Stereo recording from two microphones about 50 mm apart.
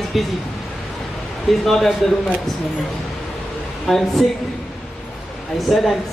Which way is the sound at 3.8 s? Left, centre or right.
Centre.